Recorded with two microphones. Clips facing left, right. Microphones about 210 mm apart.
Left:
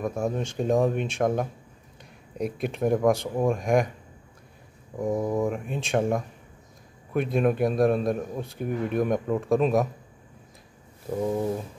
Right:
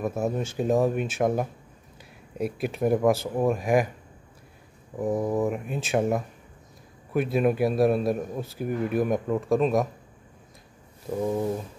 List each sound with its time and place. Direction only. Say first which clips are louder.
0.0 s a man's voice: right 1 dB; 5° right (ahead or behind)
4.9 s a man's voice: even; 5° right (ahead or behind)
11.1 s a man's voice: even; 5° left (ahead or behind)